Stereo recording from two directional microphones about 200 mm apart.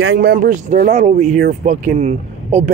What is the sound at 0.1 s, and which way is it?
Speech, 55° right (ahead or behind).